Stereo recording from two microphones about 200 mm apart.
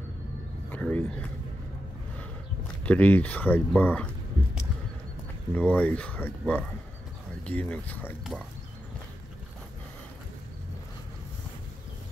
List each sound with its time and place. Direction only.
0.7 s speech: 10° left (ahead or behind)
2.8 s speech: 10° left (ahead or behind)
5.6 s speech: 5° left (ahead or behind)